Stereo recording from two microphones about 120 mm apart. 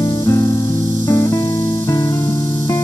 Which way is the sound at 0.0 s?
30° left (ahead or behind).